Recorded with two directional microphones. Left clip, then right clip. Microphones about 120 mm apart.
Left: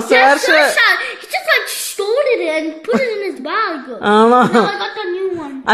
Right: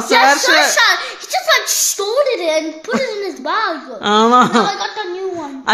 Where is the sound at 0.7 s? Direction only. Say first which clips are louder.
Even; 50° right (ahead or behind).